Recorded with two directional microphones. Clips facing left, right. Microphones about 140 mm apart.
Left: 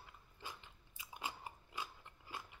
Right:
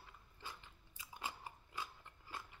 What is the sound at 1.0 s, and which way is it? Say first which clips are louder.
Biting: left 1 dB; 15° left (ahead or behind).